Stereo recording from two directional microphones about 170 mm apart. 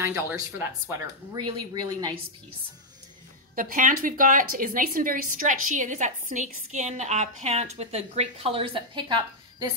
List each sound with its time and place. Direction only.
0.0 s speech: 15° right (ahead or behind)
1.3 s speech: 25° right (ahead or behind)
3.5 s a woman's voice: 55° right (ahead or behind); by 9.7 s 25° right (ahead or behind)